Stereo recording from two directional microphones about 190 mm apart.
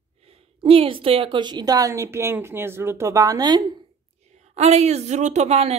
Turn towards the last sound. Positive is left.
turn(degrees=-35)  # may be behind; listen again after turning